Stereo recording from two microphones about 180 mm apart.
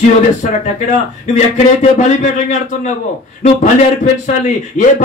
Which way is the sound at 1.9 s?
40° left (ahead or behind).